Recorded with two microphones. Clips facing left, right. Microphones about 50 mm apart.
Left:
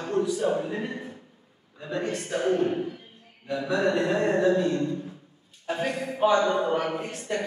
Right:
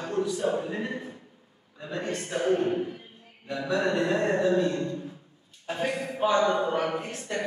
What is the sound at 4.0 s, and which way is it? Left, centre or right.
Speech, centre.